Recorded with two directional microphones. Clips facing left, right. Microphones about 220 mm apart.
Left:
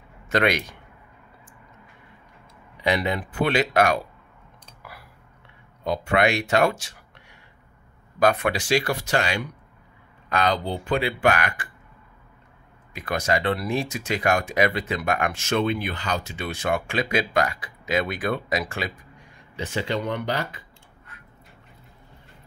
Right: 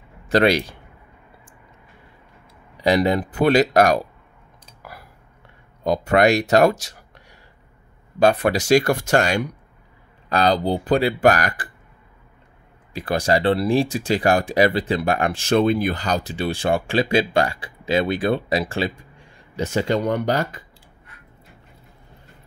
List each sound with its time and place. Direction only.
0.3 s speech: 35° right (ahead or behind)
2.8 s speech: 40° right (ahead or behind)
4.8 s a sound: 45° right (ahead or behind)
5.9 s speech: 40° right (ahead or behind)
8.2 s speech: 35° right (ahead or behind)
12.9 s speech: 30° right (ahead or behind)
19.5 s speech: 40° right (ahead or behind)